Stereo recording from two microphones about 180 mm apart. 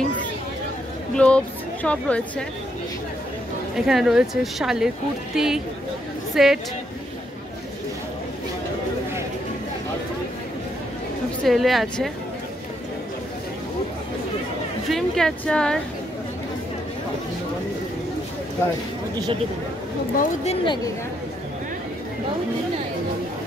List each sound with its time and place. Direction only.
1.1 s speech: 5° left (ahead or behind)
3.7 s speech: centre (ahead or behind)
11.4 s speech: centre (ahead or behind)
14.9 s speech: centre (ahead or behind)
20.4 s speech: 25° left (ahead or behind)